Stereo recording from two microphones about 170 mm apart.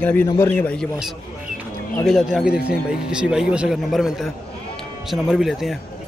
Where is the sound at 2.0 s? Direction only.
Centre (ahead or behind).